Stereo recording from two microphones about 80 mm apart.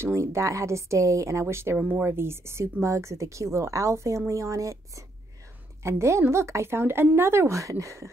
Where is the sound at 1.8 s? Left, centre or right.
Right.